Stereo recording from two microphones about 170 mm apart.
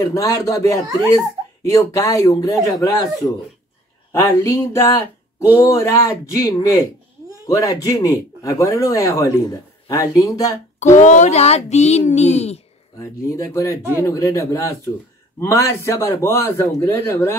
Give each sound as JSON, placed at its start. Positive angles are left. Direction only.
{"t": 0.0, "sound": "speech", "side_deg": 20}
{"t": 4.1, "sound": "a man's voice", "side_deg": 15}
{"t": 11.0, "sound": "speech", "side_deg": 45}
{"t": 13.0, "sound": "a man's voice", "side_deg": 20}